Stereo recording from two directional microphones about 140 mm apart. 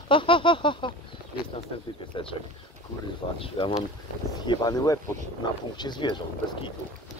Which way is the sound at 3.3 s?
40° left (ahead or behind).